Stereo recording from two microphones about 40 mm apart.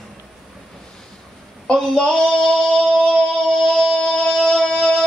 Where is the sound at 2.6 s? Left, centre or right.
Centre.